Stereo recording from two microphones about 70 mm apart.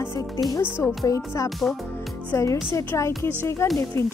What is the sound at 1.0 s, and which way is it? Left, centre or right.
Speech, left.